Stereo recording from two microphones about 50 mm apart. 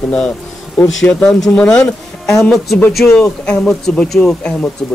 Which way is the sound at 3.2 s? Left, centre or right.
Left.